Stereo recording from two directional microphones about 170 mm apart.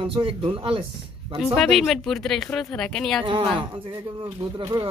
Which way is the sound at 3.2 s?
30° right (ahead or behind).